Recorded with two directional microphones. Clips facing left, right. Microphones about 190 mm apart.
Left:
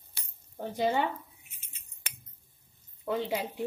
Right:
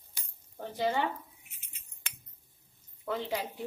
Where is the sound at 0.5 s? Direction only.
15° left (ahead or behind).